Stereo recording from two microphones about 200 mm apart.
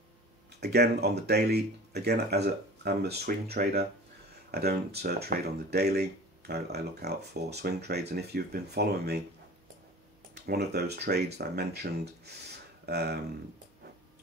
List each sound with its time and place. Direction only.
0.6 s speech: 55° right (ahead or behind)
10.4 s speech: 55° right (ahead or behind)